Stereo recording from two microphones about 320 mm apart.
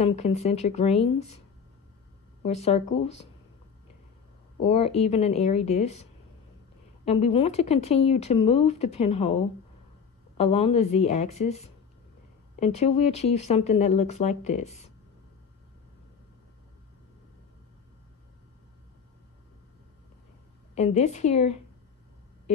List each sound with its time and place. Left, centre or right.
0.0 s speech: centre
2.4 s speech: centre
4.6 s speech: centre
7.1 s speech: centre
20.7 s speech: left